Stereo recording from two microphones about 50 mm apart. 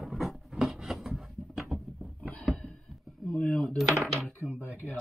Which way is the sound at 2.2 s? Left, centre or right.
Left.